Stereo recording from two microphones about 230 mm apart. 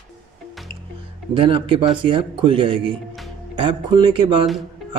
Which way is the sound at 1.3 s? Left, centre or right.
Right.